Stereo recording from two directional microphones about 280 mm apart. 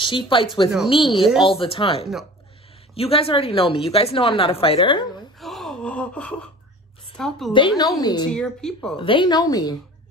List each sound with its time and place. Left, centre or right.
0.0 s a woman's voice: centre
5.4 s gasp: centre
7.2 s speech: centre
7.5 s a woman's voice: centre
8.3 s speech: centre
8.9 s a woman's voice: centre